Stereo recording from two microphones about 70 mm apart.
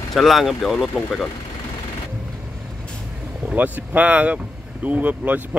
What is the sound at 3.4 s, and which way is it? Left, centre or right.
Speech, right.